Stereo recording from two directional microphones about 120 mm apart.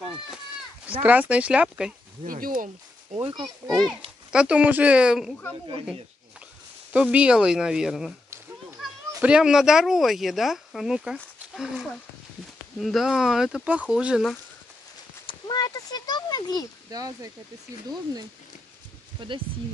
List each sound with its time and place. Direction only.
1.0 s speech: 15° right (ahead or behind)
3.2 s speech: 50° right (ahead or behind)
3.6 s speech: centre (ahead or behind)
4.3 s speech: 10° right (ahead or behind)
6.9 s speech: 10° right (ahead or behind)
15.2 s a sound: 35° left (ahead or behind)
16.9 s speech: 30° right (ahead or behind)
19.1 s speech: 45° right (ahead or behind)